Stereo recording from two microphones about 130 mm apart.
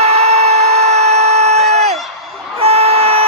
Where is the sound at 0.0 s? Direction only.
55° right (ahead or behind).